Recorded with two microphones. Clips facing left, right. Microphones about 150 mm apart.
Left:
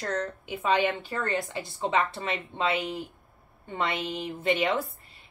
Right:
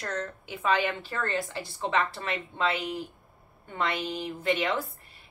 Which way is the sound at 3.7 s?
25° left (ahead or behind).